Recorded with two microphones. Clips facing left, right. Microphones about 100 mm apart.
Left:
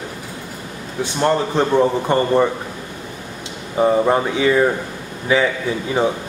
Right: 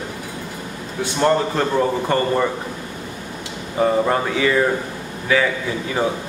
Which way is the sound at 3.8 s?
20° left (ahead or behind).